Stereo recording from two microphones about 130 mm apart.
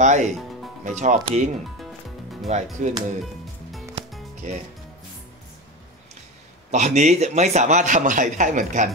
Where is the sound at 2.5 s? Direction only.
55° right (ahead or behind).